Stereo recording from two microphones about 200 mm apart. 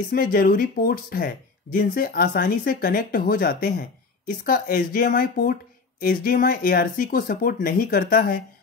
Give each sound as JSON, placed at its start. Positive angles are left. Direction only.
{"t": 0.1, "sound": "speech", "side_deg": 45}